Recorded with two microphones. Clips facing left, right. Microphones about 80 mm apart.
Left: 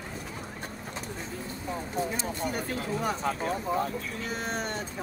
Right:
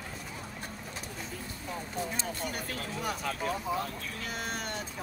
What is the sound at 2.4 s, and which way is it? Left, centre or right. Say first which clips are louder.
Speech: left 5 dB; left.